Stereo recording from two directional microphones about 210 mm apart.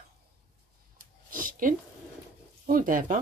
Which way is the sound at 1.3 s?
40° right (ahead or behind).